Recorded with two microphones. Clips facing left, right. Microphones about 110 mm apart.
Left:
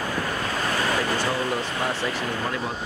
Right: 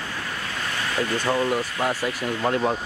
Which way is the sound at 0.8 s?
40° left (ahead or behind).